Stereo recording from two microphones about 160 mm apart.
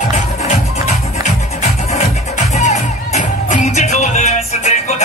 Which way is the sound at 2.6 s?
50° left (ahead or behind).